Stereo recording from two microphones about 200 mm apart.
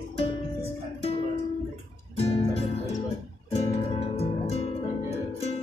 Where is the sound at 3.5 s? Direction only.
30° left (ahead or behind).